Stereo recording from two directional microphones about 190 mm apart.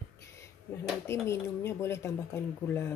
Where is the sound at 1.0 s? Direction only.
15° left (ahead or behind).